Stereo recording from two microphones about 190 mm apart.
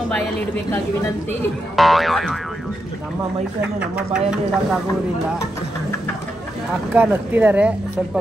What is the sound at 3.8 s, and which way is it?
Speech, 5° right (ahead or behind).